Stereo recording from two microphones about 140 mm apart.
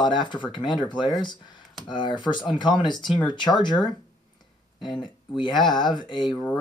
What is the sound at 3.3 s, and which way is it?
Speech, 30° left (ahead or behind).